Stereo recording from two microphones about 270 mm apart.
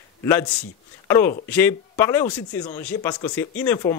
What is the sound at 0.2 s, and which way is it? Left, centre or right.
A man's voice, centre.